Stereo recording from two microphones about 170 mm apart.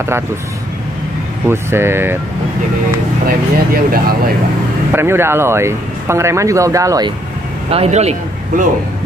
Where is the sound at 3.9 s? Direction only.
60° right (ahead or behind).